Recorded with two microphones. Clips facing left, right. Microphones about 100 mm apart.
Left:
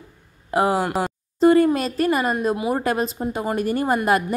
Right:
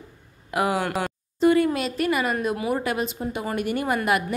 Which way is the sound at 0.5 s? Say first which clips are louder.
Left 4 dB; 30° left (ahead or behind).